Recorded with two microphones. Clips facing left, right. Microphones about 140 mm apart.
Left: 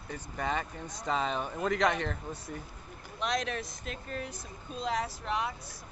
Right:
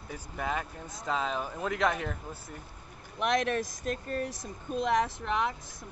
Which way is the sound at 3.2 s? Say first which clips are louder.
Right 5 dB; 55° right (ahead or behind).